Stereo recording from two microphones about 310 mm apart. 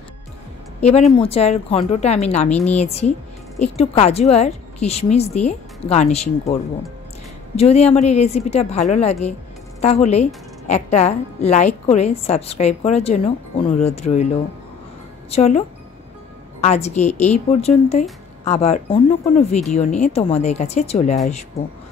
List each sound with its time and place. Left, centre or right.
0.7 s a woman's voice: centre
15.3 s a woman's voice: left
16.6 s a woman's voice: left